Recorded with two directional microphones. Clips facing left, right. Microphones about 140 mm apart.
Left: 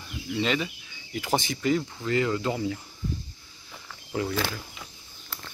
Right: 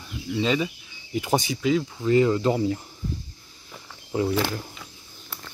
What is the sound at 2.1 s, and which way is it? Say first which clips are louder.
Speech: right 6 dB; 20° right (ahead or behind).